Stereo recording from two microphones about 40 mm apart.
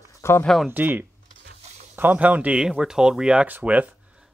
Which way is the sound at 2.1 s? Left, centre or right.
Right.